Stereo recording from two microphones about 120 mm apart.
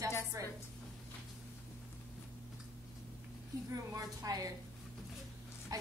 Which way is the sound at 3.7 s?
30° right (ahead or behind).